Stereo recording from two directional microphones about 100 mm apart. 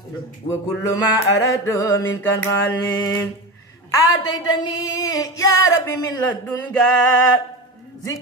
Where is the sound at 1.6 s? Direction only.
30° left (ahead or behind).